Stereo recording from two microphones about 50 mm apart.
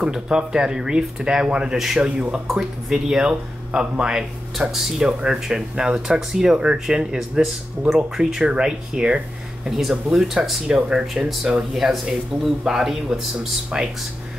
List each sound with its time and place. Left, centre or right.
0.0 s speech: centre
5.0 s speech: centre
9.7 s speech: centre
11.7 s speech: centre